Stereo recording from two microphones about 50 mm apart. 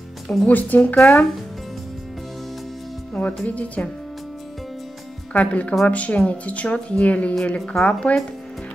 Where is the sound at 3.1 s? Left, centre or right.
Left.